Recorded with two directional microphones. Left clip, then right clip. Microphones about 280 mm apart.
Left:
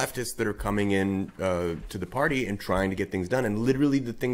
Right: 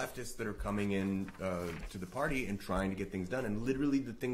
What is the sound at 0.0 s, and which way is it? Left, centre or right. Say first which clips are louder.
Speech: left 11 dB; left.